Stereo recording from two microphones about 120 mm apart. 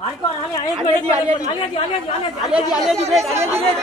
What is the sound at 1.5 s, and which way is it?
Speech, 40° left (ahead or behind).